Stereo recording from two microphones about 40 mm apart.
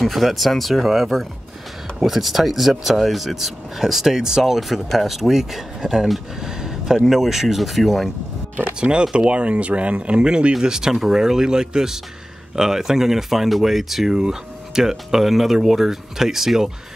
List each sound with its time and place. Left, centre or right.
0.0 s speech: centre
6.4 s a sound: centre
7.1 s speech: centre
9.1 s speech: right
10.6 s speech: centre